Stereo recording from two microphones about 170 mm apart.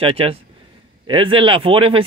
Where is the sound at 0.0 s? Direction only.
35° right (ahead or behind).